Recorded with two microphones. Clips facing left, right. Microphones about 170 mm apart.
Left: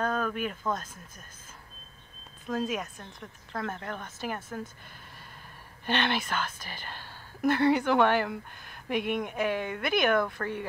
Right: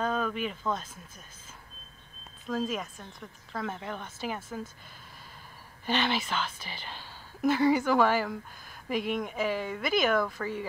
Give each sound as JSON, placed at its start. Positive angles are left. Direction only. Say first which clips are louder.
{"t": 0.0, "sound": "a sound", "louder": "even", "side_deg": 0}
{"t": 0.5, "sound": "speech", "louder": "even", "side_deg": 0}
{"t": 2.5, "sound": "speech", "louder": "left 1 dB", "side_deg": 5}
{"t": 5.9, "sound": "speech", "louder": "even", "side_deg": -5}
{"t": 6.6, "sound": "speech", "louder": "even", "side_deg": 50}
{"t": 7.4, "sound": "speech", "louder": "even", "side_deg": -5}
{"t": 8.7, "sound": "a sound", "louder": "left 1 dB", "side_deg": 0}
{"t": 9.1, "sound": "speech", "louder": "left 1 dB", "side_deg": 0}